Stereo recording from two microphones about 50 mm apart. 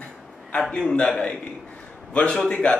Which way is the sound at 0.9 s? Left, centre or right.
Left.